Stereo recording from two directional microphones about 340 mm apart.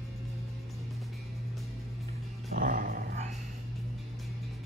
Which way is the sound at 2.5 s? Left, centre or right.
Right.